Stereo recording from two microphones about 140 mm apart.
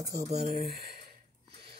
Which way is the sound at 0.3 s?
50° right (ahead or behind).